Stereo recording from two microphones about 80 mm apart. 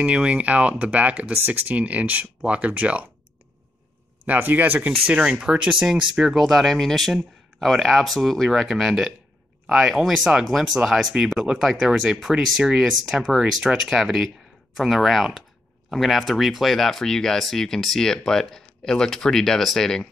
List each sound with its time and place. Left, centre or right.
0.0 s speech: centre
4.3 s speech: right; by 20.1 s centre